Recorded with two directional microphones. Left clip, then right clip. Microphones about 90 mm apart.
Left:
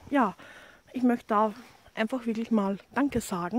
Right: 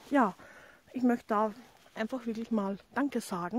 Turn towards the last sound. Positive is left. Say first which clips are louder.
# left 4 dB
turn(degrees=0)  # may be behind; listen again after turning